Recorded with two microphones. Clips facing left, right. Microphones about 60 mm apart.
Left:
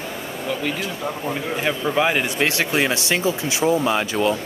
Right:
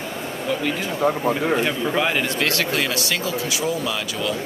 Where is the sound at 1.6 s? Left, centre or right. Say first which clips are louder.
Left 1 dB; centre.